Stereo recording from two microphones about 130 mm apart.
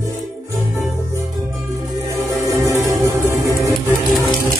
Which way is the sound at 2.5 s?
25° right (ahead or behind).